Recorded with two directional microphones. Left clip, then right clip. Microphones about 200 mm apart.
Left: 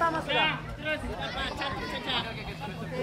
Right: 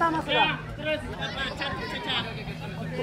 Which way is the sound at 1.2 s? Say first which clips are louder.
Right 2 dB; 45° left (ahead or behind).